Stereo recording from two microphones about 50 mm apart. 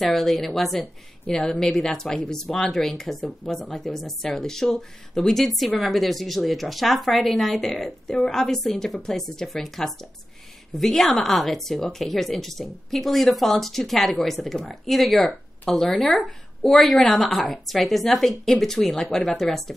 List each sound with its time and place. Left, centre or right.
0.0 s speech: centre
1.2 s speech: centre